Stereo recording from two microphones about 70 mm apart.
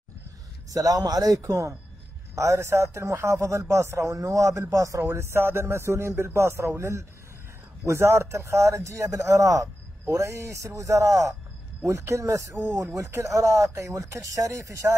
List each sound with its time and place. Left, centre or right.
0.7 s a man's voice: right
1.4 s speech: right
4.1 s speech: right